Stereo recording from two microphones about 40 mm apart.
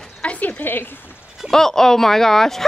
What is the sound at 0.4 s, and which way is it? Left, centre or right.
Speech, left.